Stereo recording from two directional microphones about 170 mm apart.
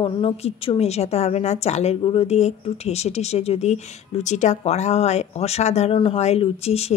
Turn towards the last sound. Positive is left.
turn(degrees=35)  # may be behind; listen again after turning